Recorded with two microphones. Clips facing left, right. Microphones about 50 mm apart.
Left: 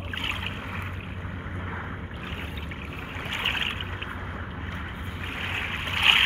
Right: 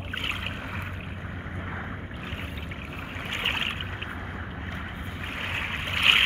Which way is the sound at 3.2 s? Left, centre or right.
Left.